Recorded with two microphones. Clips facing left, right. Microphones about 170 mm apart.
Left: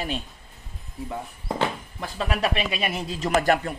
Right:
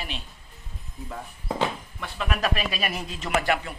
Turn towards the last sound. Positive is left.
turn(degrees=45)  # may be behind; listen again after turning